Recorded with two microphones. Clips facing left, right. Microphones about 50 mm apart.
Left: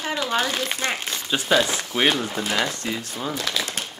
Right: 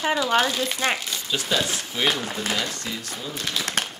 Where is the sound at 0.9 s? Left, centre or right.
Left.